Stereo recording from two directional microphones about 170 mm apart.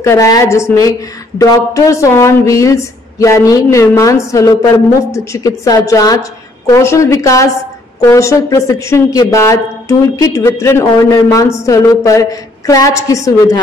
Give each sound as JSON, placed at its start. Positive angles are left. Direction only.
{"t": 0.0, "sound": "a woman's voice", "side_deg": 20}